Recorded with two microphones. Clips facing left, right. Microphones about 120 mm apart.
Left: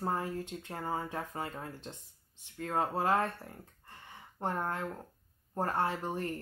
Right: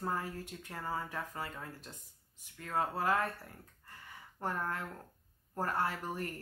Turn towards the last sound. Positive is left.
turn(degrees=25)  # may be behind; listen again after turning